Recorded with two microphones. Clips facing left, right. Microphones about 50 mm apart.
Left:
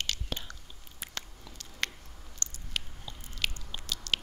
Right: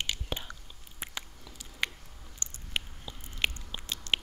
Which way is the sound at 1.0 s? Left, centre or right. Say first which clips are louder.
Right 3 dB; right.